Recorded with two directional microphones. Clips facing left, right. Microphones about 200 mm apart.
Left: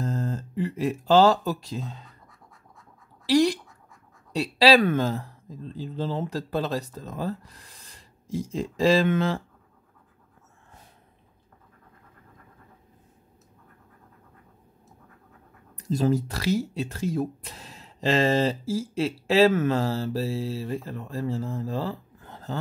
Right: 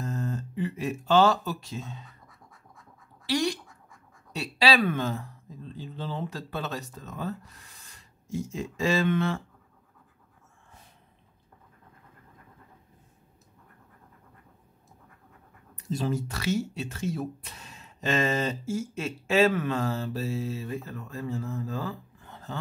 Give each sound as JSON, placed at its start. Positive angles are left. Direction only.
{"t": 0.0, "sound": "speech", "side_deg": 30}
{"t": 4.3, "sound": "speech", "side_deg": 35}
{"t": 8.5, "sound": "speech", "side_deg": 35}
{"t": 15.8, "sound": "speech", "side_deg": 40}